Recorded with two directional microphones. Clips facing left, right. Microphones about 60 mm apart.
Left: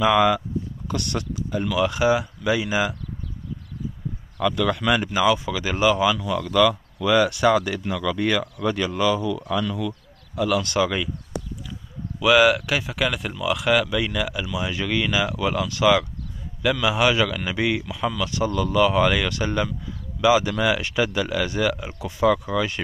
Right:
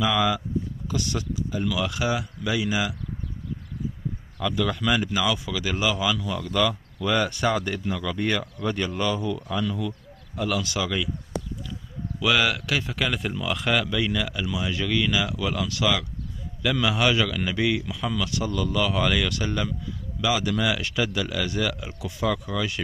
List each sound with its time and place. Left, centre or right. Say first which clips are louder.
0.0 s speech: left 5 dB; left
0.8 s speech: left 1 dB; left
1.7 s speech: left 8 dB; left
4.4 s speech: left 4 dB; left
5.1 s speech: left 5 dB; left
6.2 s speech: left 5 dB; left
10.6 s speech: left 5 dB; left
12.2 s speech: left 6 dB; centre
12.8 s speech: left 2 dB; centre
13.8 s speech: left 2 dB; centre; by 22.8 s left